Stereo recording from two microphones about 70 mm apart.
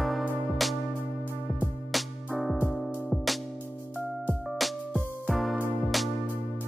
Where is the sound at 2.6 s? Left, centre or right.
Left.